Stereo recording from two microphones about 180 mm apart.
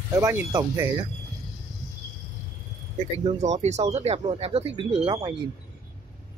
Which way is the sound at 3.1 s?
35° right (ahead or behind).